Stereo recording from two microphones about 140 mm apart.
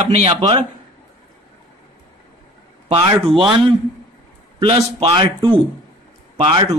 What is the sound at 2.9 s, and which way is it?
Speech, 40° right (ahead or behind).